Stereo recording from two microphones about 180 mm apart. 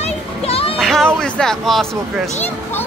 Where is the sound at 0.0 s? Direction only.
35° left (ahead or behind).